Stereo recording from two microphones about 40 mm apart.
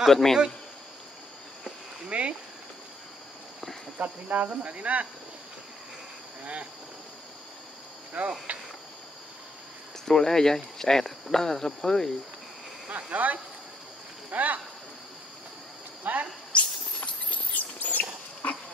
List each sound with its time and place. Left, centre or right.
0.1 s speech: centre
2.0 s a sound: right
4.0 s speech: right
6.4 s speech: right
8.2 s speech: right
10.0 s speech: centre
12.9 s speech: right
16.0 s speech: right
16.5 s a sound: left
17.6 s rodents: left
18.4 s dog: left